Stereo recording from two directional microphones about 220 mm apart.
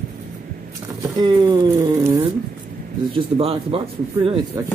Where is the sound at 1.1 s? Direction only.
20° right (ahead or behind).